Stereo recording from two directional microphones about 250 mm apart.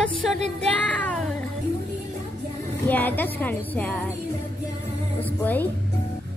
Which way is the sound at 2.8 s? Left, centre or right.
Centre.